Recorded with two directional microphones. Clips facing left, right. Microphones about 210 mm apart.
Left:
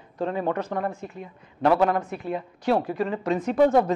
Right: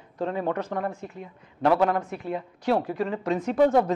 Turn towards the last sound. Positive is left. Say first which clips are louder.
# left 1 dB
turn(degrees=10)  # may be behind; listen again after turning